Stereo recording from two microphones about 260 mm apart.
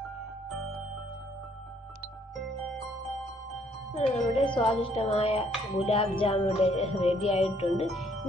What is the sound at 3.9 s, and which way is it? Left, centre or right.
Speech, left.